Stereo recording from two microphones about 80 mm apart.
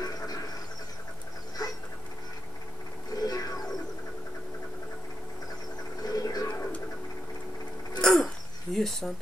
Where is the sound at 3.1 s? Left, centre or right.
Left.